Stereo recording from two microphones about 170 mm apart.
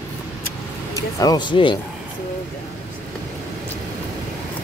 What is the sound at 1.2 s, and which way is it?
Speech, 25° left (ahead or behind).